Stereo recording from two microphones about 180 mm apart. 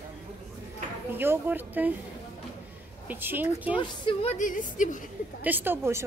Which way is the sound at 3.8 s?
30° left (ahead or behind).